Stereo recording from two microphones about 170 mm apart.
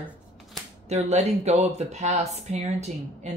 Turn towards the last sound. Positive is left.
turn(degrees=-40)  # may be behind; listen again after turning